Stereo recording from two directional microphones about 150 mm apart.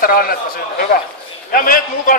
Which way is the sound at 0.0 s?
75° left (ahead or behind).